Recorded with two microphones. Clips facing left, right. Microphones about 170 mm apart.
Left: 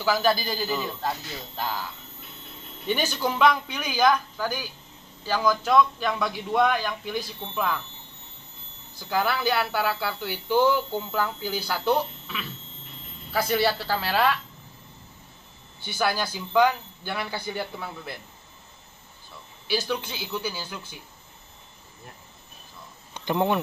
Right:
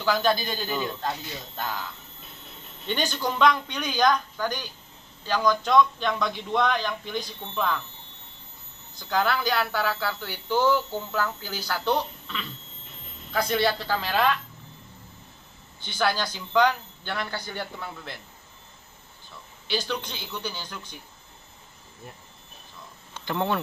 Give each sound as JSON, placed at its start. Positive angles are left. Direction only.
{"t": 0.0, "sound": "a man's voice", "side_deg": 5}
{"t": 2.9, "sound": "a man's voice", "side_deg": 5}
{"t": 8.9, "sound": "a man's voice", "side_deg": 10}
{"t": 15.8, "sound": "speech", "side_deg": 10}
{"t": 19.7, "sound": "speech", "side_deg": 10}
{"t": 23.1, "sound": "speech", "side_deg": 15}